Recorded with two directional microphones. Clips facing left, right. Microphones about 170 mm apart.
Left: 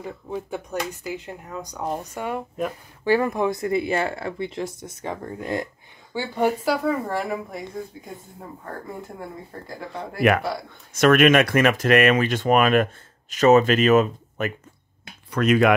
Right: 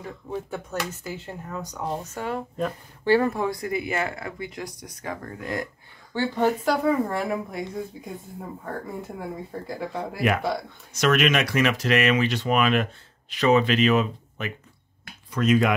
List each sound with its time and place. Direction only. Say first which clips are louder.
0.3 s speech: left 1 dB; 15° left (ahead or behind)
6.1 s speech: even; 10° left (ahead or behind)
9.2 s speech: right 3 dB; centre (ahead or behind)
10.9 s speech: left 6 dB; 50° left (ahead or behind)
15.3 s speech: left 3 dB; 65° left (ahead or behind)